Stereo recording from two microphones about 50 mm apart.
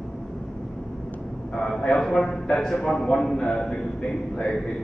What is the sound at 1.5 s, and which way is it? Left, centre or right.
A man's voice, centre.